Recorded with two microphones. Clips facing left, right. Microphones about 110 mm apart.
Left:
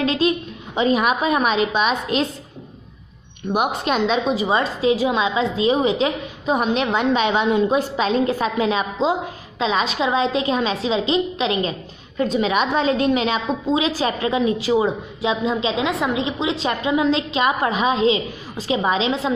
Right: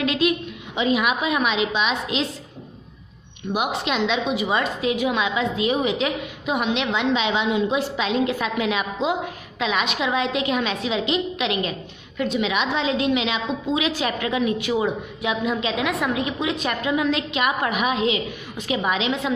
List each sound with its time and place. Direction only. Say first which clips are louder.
0.0 s a woman's voice: left 2 dB; 35° left (ahead or behind)
3.5 s a woman's voice: left 3 dB; 50° left (ahead or behind); by 19.3 s 30° left (ahead or behind)